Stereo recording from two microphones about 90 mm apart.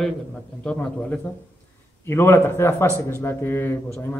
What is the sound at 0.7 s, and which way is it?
Speech, 15° left (ahead or behind).